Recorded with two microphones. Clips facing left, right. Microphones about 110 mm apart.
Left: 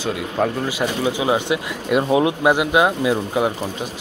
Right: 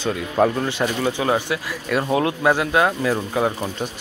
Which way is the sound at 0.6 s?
10° left (ahead or behind).